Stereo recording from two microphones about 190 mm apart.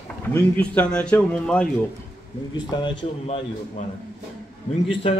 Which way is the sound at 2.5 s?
25° left (ahead or behind).